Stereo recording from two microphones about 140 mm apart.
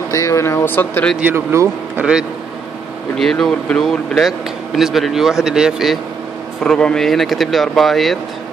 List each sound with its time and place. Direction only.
0.1 s speech: 20° left (ahead or behind)
1.2 s speech: 20° right (ahead or behind)
3.2 s speech: centre (ahead or behind)